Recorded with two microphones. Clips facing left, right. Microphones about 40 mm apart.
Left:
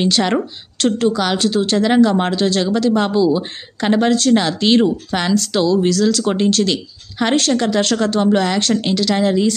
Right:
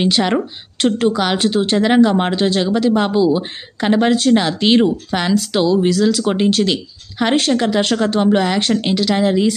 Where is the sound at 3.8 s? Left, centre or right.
Centre.